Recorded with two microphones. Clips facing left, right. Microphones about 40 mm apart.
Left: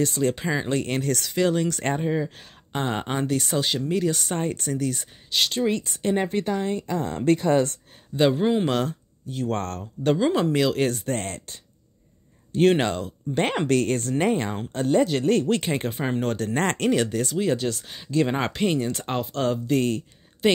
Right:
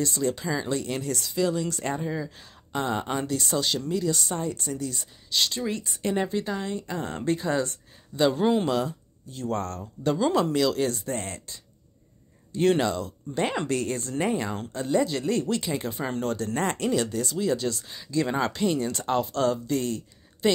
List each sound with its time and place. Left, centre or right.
0.0 s speech: left
2.0 s speech: left
3.9 s speech: left
5.3 s speech: left
8.3 s speech: centre
8.6 s speech: left
10.1 s speech: left
10.4 s speech: left
11.1 s speech: left
12.5 s speech: left
13.3 s speech: left
16.5 s speech: left
16.9 s speech: left
18.2 s speech: left